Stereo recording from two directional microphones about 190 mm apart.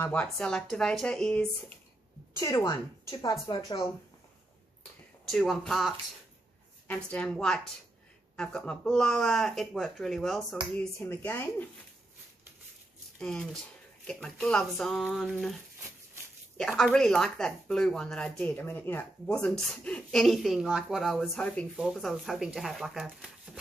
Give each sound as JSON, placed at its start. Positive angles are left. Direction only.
{"t": 0.0, "sound": "speech", "side_deg": 10}
{"t": 2.3, "sound": "a woman's voice", "side_deg": 15}
{"t": 5.2, "sound": "a woman's voice", "side_deg": 0}
{"t": 13.2, "sound": "speech", "side_deg": 5}
{"t": 16.5, "sound": "speech", "side_deg": 0}